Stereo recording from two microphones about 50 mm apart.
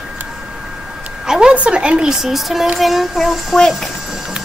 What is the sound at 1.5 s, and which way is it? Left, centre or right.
A woman's voice, right.